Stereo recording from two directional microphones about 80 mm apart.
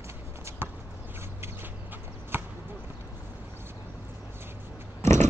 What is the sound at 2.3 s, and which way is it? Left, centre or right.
Basketball bounce, right.